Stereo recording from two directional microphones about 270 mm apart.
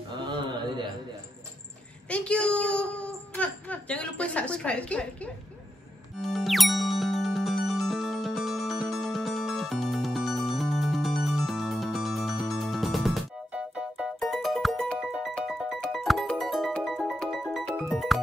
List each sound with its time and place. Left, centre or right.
0.2 s a sound: centre
2.0 s a woman's voice: centre
6.2 s music: centre